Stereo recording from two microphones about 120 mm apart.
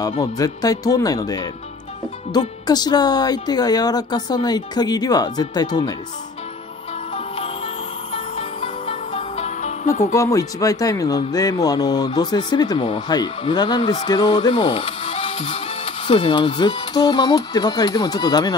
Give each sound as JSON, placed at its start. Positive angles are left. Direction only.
{"t": 0.2, "sound": "speech", "side_deg": 30}
{"t": 8.1, "sound": "music", "side_deg": 50}
{"t": 10.1, "sound": "speech", "side_deg": 25}